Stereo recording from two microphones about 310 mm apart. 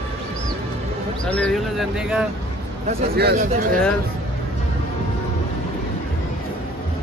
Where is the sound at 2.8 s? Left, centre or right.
Right.